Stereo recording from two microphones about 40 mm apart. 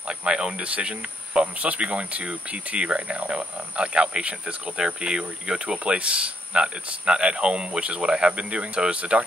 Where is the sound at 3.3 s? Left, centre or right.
Right.